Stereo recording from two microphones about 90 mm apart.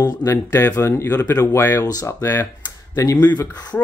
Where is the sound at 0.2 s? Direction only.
30° left (ahead or behind).